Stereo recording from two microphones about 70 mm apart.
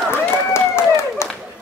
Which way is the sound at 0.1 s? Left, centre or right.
Left.